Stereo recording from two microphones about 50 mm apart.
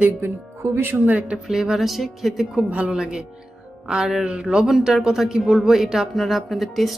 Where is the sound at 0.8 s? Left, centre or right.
Right.